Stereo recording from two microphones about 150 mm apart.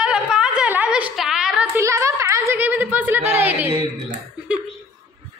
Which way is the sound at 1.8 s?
20° right (ahead or behind).